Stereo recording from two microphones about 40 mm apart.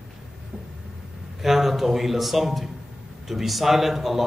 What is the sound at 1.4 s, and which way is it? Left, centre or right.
A man's voice, centre.